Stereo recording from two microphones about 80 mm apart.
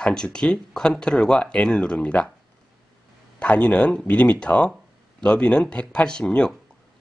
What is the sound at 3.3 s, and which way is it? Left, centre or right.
Speech, centre.